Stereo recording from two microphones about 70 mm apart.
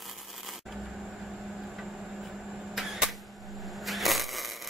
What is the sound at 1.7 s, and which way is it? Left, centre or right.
Vehicle, centre.